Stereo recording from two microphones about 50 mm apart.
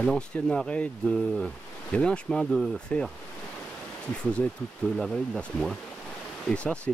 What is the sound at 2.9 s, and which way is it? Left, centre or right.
Speech, left.